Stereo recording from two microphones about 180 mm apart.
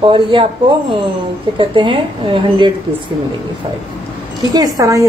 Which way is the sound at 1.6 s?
25° right (ahead or behind).